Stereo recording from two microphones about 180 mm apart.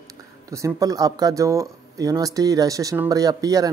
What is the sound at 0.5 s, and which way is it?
Speech, 20° right (ahead or behind).